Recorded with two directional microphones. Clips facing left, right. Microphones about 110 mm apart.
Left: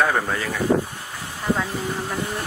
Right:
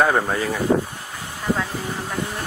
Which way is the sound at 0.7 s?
55° right (ahead or behind).